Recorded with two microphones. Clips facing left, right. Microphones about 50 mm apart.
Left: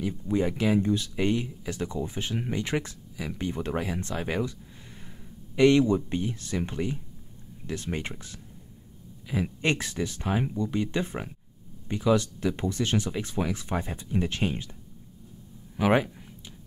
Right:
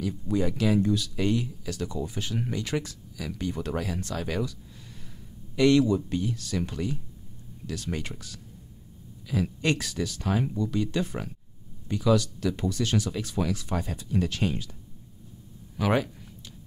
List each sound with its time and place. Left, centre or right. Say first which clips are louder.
0.3 s speech: even; left
5.6 s speech: left 1 dB; left
15.7 s a sound: left 2 dB; left